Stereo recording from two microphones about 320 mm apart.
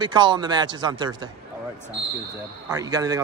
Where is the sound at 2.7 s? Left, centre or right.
Centre.